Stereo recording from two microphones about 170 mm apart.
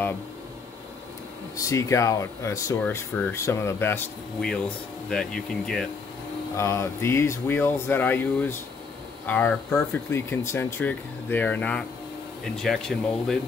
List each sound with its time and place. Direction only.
1.6 s speech: 20° left (ahead or behind)
5.1 s speech: 5° left (ahead or behind)
6.5 s speech: 15° left (ahead or behind)